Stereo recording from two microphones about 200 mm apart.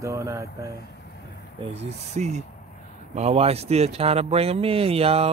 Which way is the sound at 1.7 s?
35° right (ahead or behind).